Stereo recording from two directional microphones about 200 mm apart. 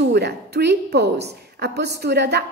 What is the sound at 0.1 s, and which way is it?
A woman's voice, 55° right (ahead or behind).